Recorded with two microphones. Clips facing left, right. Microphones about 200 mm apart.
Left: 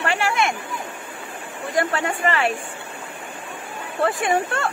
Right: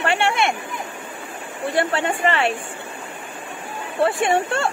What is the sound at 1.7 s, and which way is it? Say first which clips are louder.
Speech: right 1 dB; 30° right (ahead or behind).